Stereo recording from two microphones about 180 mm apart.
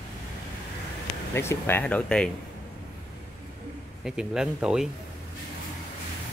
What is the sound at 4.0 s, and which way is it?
Speech, 5° right (ahead or behind).